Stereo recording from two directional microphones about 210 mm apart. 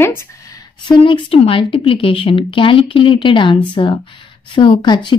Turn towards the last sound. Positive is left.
turn(degrees=20)  # may be behind; listen again after turning